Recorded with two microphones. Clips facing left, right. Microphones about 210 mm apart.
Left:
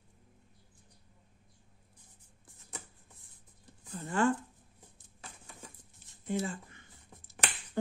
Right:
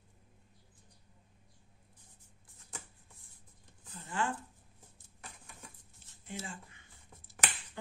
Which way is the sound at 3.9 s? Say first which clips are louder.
Left 7 dB; 50° left (ahead or behind).